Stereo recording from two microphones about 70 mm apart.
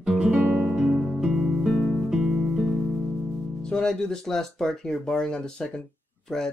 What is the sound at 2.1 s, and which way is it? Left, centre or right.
Music, centre.